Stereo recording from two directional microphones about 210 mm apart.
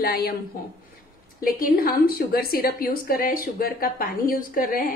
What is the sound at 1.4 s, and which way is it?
A woman's voice, 45° left (ahead or behind).